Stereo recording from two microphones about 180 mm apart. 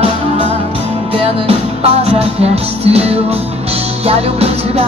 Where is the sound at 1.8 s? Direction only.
35° right (ahead or behind).